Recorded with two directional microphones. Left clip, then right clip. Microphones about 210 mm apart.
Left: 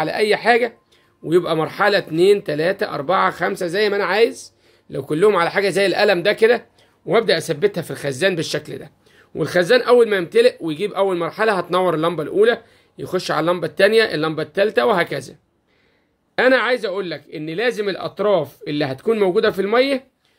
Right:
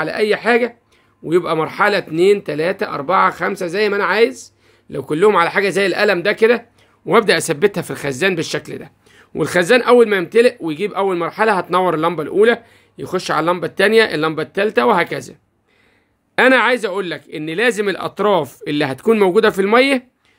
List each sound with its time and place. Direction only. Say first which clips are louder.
0.0 s speech: right 1 dB; 10° right (ahead or behind)
7.1 s speech: right 3 dB; 30° right (ahead or behind)
16.3 s speech: right 3 dB; 25° right (ahead or behind)